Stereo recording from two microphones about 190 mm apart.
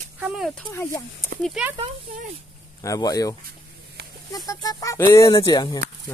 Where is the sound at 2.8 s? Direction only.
20° left (ahead or behind).